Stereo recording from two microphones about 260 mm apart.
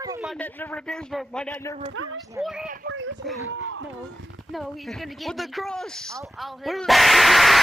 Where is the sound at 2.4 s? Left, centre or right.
Centre.